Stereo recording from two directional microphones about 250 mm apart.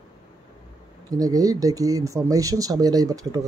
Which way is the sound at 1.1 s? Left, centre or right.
Centre.